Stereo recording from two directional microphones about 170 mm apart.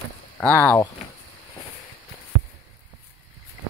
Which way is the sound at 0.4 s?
10° left (ahead or behind).